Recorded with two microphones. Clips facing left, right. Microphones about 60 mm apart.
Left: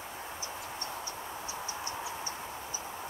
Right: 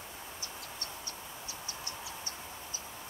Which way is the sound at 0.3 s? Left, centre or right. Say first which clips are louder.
Left 5 dB; left.